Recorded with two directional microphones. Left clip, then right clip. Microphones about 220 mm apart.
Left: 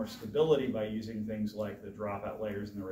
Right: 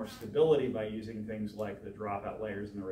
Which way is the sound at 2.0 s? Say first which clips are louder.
Even; 15° left (ahead or behind).